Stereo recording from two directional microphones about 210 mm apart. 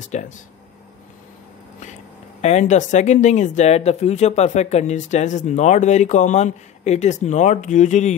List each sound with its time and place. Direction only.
0.1 s speech: 35° left (ahead or behind)
2.4 s speech: 30° left (ahead or behind)